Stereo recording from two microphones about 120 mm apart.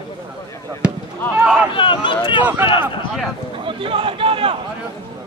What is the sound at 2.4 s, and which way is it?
Speech, 20° right (ahead or behind).